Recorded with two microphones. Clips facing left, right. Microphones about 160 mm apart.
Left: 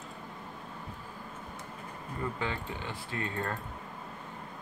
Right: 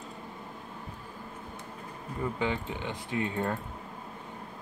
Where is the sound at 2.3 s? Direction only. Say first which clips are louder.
Right 4 dB; 15° right (ahead or behind).